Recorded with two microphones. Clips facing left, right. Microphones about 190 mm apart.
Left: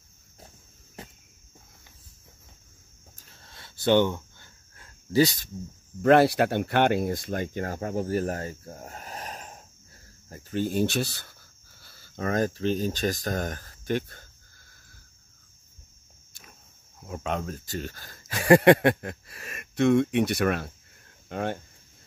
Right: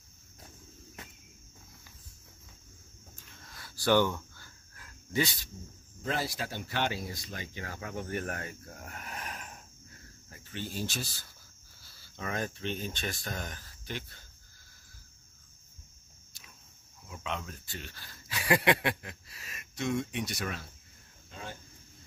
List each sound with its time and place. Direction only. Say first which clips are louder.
1.0 s cricket: left 7 dB; 30° left (ahead or behind)
3.2 s a sound: left 1 dB; 35° left (ahead or behind)
6.0 s speech: left 16 dB; 65° left (ahead or behind)
11.8 s speech: left 9 dB; 50° left (ahead or behind)
17.0 s speech: left 8 dB; 45° left (ahead or behind); by 21.5 s 65° left (ahead or behind)